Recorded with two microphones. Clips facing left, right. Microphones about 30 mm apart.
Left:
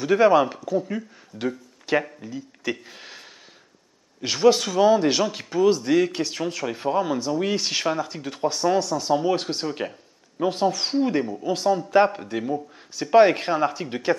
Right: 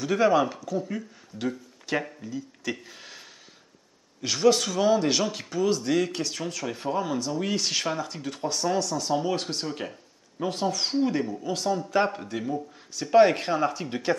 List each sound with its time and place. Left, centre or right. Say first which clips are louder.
0.0 s speech: left 5 dB; centre